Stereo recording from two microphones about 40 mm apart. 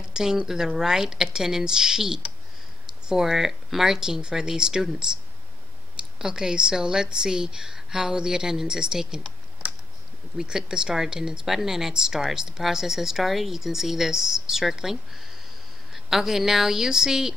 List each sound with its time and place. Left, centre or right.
0.1 s a sound: centre
0.5 s speech: centre
6.1 s speech: centre
10.3 s speech: centre